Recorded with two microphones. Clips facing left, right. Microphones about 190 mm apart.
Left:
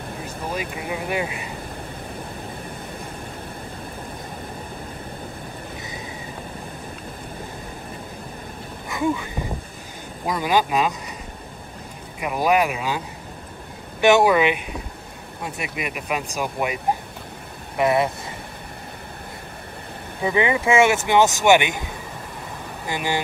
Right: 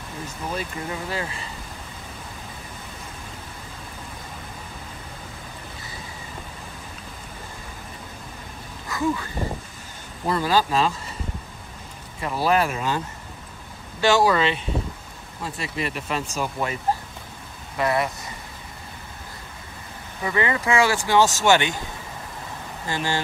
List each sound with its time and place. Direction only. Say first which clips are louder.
0.8 s speech: left 4 dB; 15° left (ahead or behind)
8.8 s a sound: left 1 dB; 20° left (ahead or behind)
10.2 s speech: even; 15° left (ahead or behind)
12.2 s speech: left 2 dB; 15° left (ahead or behind)
14.0 s speech: left 3 dB; 20° left (ahead or behind)
20.2 s speech: left 4 dB; 20° left (ahead or behind)
22.8 s speech: left 1 dB; 15° left (ahead or behind)